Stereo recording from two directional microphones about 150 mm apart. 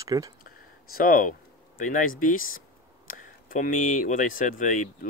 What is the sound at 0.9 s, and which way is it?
Speech, 70° left (ahead or behind).